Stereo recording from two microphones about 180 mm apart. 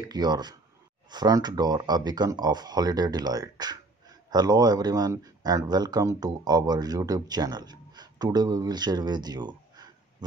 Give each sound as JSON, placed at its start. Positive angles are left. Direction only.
{"t": 0.1, "sound": "speech", "side_deg": -25}